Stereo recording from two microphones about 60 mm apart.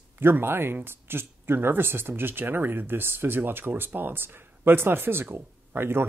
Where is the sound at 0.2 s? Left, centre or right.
Right.